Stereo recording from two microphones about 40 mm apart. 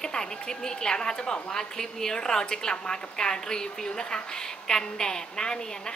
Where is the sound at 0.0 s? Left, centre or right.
Centre.